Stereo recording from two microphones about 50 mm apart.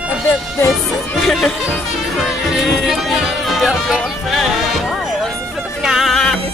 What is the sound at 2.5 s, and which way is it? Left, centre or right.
Music, centre.